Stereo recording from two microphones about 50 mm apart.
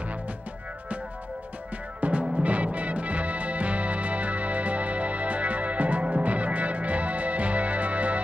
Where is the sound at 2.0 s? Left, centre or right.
Right.